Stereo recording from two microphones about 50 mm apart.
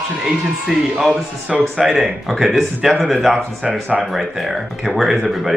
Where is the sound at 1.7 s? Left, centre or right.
Centre.